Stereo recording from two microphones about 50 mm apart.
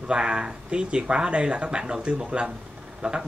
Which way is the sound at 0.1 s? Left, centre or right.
Centre.